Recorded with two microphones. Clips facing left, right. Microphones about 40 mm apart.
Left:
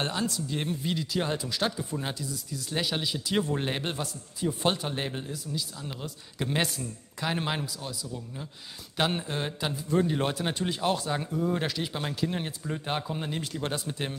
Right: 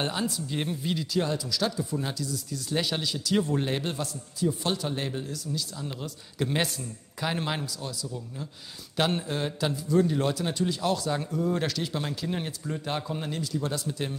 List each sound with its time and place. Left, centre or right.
0.0 s speech: centre
1.2 s speech: left
2.0 s speech: left
2.3 s speech: centre
3.0 s speech: left
5.8 s speech: centre
9.8 s speech: left
11.1 s speech: centre
12.6 s speech: centre
13.4 s speech: left
13.7 s speech: left